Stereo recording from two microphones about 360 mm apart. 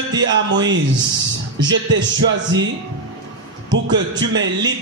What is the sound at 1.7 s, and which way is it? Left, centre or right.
Speech, right.